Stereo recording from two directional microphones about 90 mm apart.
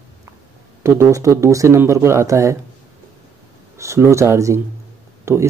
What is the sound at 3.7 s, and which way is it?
Speech, 30° right (ahead or behind).